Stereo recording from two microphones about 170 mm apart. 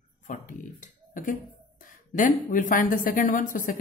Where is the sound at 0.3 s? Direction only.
50° left (ahead or behind).